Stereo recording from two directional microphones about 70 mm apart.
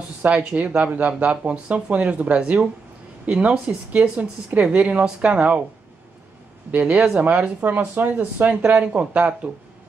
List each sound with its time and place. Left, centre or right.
0.2 s speech: right
6.7 s speech: centre